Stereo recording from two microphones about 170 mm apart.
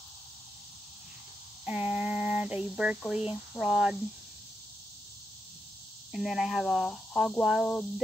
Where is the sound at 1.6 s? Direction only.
10° right (ahead or behind).